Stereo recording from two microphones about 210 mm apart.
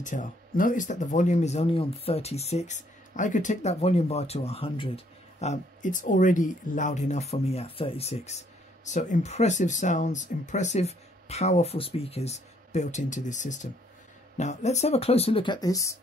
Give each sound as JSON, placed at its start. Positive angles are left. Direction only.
{"t": 0.0, "sound": "speech", "side_deg": 35}